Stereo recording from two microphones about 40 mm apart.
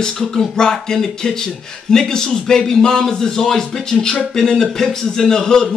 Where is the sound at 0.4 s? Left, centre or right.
Centre.